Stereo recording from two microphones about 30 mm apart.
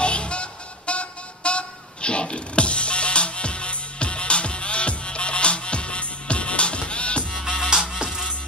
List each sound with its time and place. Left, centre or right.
0.0 s music: left
8.0 s music: right